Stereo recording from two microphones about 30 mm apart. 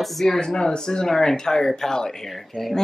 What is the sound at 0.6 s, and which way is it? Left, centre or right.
Speech, left.